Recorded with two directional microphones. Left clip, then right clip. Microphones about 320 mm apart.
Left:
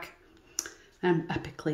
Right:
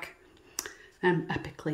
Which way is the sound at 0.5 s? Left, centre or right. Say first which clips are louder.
Left 1 dB; centre.